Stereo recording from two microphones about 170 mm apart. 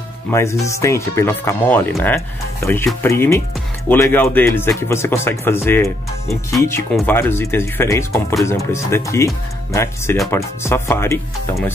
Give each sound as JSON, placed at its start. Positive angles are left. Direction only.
{"t": 0.3, "sound": "speech", "side_deg": 15}